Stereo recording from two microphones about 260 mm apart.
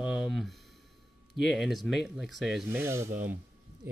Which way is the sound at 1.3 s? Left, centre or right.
Centre.